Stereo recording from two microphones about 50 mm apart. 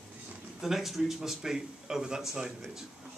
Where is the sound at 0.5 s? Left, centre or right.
Centre.